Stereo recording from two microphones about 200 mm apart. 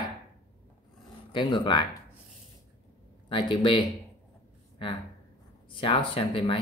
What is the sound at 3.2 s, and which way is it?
Speech, 25° left (ahead or behind).